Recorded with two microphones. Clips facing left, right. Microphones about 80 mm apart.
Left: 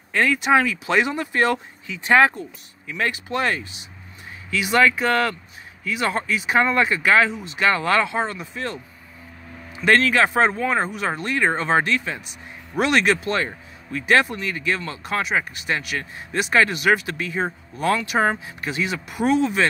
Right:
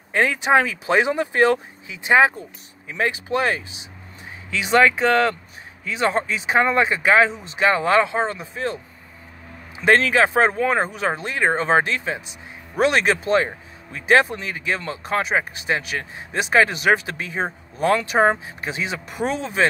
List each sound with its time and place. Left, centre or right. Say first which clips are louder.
0.1 s speech: right 1 dB; right
9.8 s speech: right 1 dB; right